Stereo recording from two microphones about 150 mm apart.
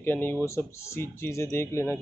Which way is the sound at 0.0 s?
15° left (ahead or behind).